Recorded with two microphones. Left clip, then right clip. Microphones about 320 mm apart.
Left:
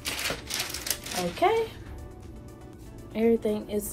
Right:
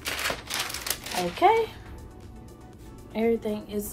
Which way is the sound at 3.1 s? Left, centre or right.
Right.